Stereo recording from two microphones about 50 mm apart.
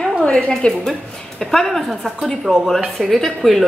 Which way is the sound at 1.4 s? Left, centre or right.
Centre.